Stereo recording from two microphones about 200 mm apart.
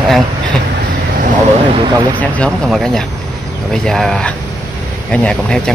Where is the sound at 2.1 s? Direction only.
5° left (ahead or behind).